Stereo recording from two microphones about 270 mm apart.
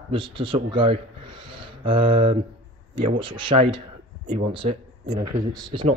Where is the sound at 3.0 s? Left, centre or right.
Centre.